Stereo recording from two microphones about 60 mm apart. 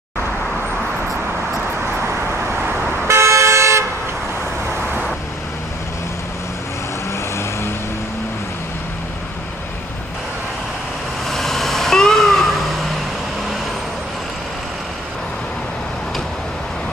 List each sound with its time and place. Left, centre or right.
3.1 s vehicle: right
11.2 s vehicle: centre